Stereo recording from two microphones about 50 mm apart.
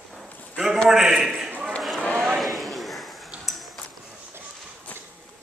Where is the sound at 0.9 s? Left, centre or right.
Centre.